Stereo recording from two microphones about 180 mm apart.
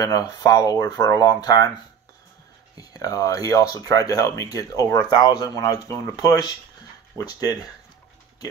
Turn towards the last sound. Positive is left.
turn(degrees=20)  # may be behind; listen again after turning